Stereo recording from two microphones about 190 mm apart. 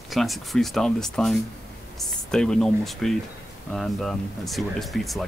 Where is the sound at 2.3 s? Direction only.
5° left (ahead or behind).